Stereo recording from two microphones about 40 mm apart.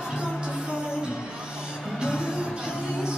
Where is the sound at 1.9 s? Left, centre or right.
Right.